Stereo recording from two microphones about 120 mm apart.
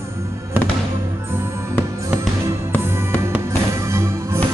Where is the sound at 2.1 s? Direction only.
25° right (ahead or behind).